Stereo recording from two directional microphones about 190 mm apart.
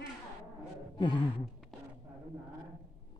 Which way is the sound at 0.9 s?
25° left (ahead or behind).